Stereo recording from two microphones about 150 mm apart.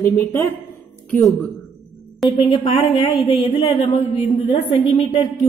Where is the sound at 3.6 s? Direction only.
40° left (ahead or behind).